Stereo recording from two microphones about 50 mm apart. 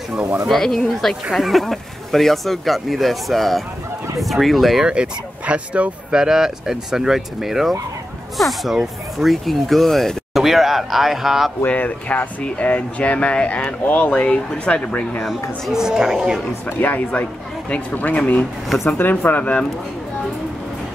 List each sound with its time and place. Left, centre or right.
0.1 s speech: right
0.5 s speech: centre
4.8 s speech: centre
6.2 s speech: centre
11.6 s speech: left
15.7 s speech: centre
16.8 s speech: left